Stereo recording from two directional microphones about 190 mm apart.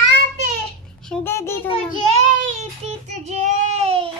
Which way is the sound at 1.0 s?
10° left (ahead or behind).